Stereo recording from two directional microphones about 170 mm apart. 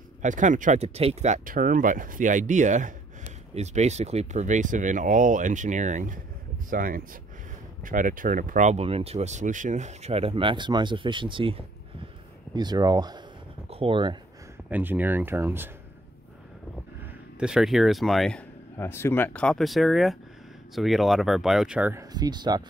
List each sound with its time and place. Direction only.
0.2 s speech: 45° right (ahead or behind); by 13.2 s 25° right (ahead or behind)
13.7 s speech: 35° right (ahead or behind)
14.7 s speech: 10° right (ahead or behind)
17.4 s speech: 5° right (ahead or behind)
18.8 s speech: 15° left (ahead or behind); by 22.0 s 10° right (ahead or behind)
22.1 s speech: 25° right (ahead or behind)